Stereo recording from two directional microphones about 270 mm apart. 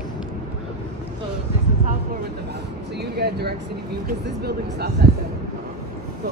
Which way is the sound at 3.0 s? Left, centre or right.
Right.